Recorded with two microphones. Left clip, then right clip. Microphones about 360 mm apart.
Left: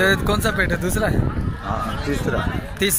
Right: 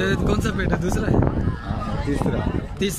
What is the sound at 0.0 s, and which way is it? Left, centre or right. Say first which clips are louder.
Speech: left 5 dB; centre.